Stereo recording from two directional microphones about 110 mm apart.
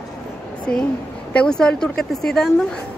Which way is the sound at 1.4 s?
5° left (ahead or behind).